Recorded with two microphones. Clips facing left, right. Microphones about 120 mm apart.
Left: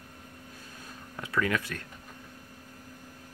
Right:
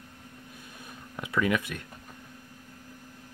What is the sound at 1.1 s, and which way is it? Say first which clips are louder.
Speech: right 2 dB; 20° right (ahead or behind).